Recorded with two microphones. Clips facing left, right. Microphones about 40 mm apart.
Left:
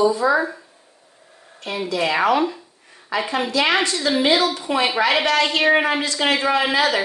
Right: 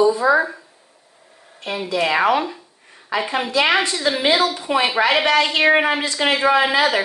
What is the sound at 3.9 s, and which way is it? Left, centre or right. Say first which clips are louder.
A woman's voice: even; centre.